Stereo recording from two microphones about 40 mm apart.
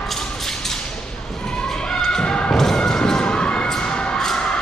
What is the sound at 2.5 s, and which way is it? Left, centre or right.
Cheering, centre.